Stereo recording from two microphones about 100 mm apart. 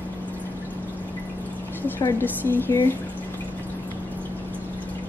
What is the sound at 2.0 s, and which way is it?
Speech, 25° left (ahead or behind).